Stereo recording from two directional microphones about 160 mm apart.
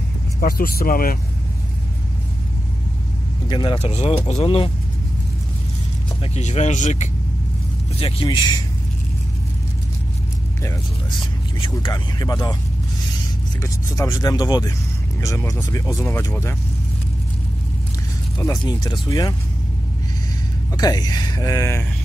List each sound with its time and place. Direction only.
0.4 s speech: 65° left (ahead or behind)
3.4 s speech: 30° left (ahead or behind)
6.3 s speech: 45° left (ahead or behind)
8.0 s speech: 30° left (ahead or behind)
11.7 s speech: 25° left (ahead or behind)
13.6 s speech: 20° left (ahead or behind)
18.4 s speech: 20° left (ahead or behind)
20.7 s speech: 25° left (ahead or behind)